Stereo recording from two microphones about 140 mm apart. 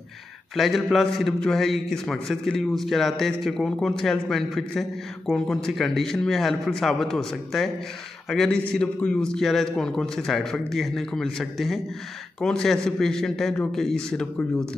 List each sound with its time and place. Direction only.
0.6 s a man's voice: centre (ahead or behind)